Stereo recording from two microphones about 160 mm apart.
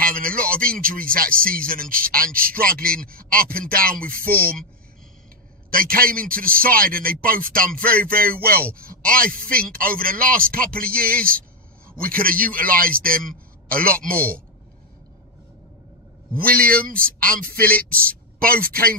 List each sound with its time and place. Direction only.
0.0 s a sound: 60° right (ahead or behind)
0.7 s speech: 60° right (ahead or behind)
4.3 s speech: 10° left (ahead or behind)
5.7 s speech: 65° right (ahead or behind)
7.7 s speech: 10° left (ahead or behind)
8.0 s a man's voice: 65° right (ahead or behind)
14.0 s speech: 10° left (ahead or behind)
16.3 s speech: 65° right (ahead or behind)
17.4 s speech: 10° left (ahead or behind)
18.0 s speech: 65° right (ahead or behind)